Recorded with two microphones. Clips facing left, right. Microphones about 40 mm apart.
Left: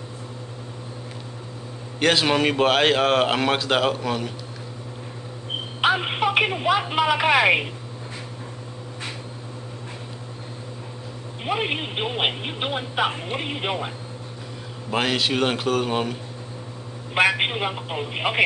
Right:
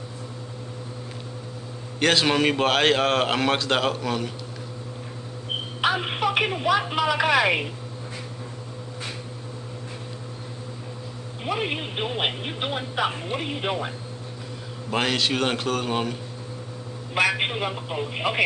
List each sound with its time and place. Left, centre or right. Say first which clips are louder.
2.0 s a man's voice: left 1 dB; centre
5.8 s speech: left 3 dB; centre
11.4 s speech: left 2 dB; centre
14.9 s a man's voice: left 1 dB; centre
17.3 s a man's voice: left 2 dB; centre